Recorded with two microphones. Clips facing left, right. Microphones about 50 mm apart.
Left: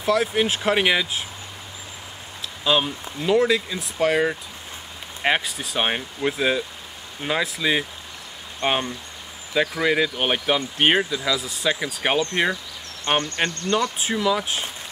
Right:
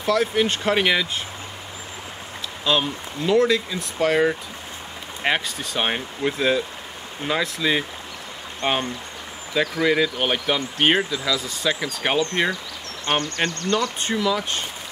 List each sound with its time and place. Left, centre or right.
0.0 s speech: centre
2.6 s speech: centre
9.5 s speech: centre
13.0 s speech: left
13.9 s speech: centre